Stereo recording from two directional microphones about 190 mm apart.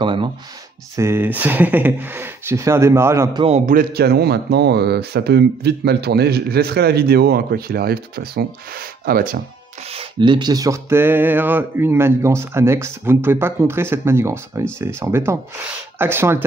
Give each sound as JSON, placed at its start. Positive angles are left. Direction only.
{"t": 0.0, "sound": "speech", "side_deg": -25}
{"t": 0.9, "sound": "speech", "side_deg": -15}
{"t": 3.4, "sound": "a man's voice", "side_deg": -35}
{"t": 3.7, "sound": "speech", "side_deg": -55}
{"t": 9.9, "sound": "speech", "side_deg": -25}